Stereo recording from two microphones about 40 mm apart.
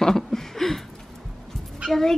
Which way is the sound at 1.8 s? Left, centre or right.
Centre.